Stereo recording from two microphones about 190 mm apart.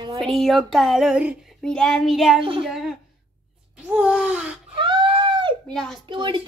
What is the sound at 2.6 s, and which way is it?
Speech, centre (ahead or behind).